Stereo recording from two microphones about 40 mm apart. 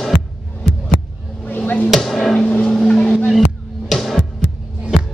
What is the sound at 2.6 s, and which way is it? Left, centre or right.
Vehicle, left.